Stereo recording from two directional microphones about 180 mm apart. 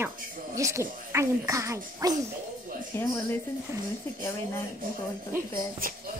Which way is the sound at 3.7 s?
15° right (ahead or behind).